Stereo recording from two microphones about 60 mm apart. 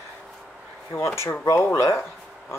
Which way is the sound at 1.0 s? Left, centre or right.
Left.